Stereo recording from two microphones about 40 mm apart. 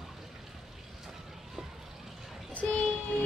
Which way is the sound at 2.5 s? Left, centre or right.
Left.